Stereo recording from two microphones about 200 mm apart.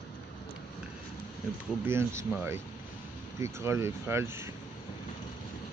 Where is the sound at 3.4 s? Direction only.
10° right (ahead or behind).